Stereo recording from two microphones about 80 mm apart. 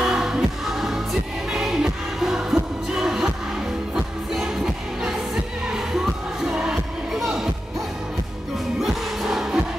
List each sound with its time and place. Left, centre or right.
0.0 s music: centre
8.7 s music: centre